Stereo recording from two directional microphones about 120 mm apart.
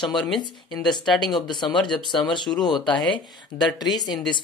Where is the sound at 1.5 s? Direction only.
40° left (ahead or behind).